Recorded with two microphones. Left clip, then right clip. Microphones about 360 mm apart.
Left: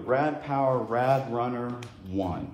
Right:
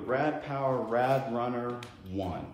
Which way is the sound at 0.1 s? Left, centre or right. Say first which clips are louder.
Left 4 dB; centre.